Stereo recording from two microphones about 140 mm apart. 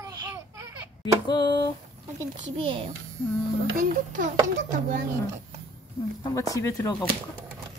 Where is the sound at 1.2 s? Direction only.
30° left (ahead or behind).